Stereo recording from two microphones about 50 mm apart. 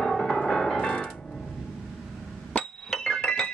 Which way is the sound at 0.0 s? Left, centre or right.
Centre.